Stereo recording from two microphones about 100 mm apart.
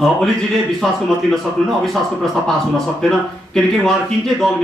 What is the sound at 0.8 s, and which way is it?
A man's voice, centre (ahead or behind).